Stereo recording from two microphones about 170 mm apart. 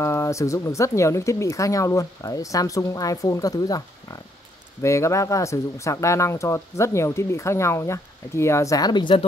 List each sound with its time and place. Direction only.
0.0 s speech: 15° left (ahead or behind)